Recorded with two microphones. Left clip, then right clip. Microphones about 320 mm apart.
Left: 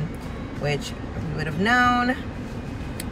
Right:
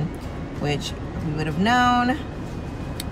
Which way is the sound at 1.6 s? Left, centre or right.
Centre.